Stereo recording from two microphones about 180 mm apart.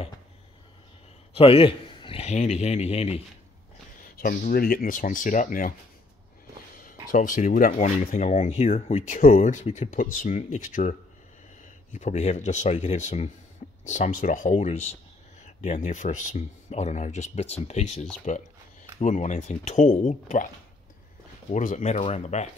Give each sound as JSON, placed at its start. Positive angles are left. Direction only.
{"t": 1.3, "sound": "speech", "side_deg": 30}
{"t": 4.2, "sound": "speech", "side_deg": 50}
{"t": 6.8, "sound": "speech", "side_deg": 50}
{"t": 21.5, "sound": "speech", "side_deg": 45}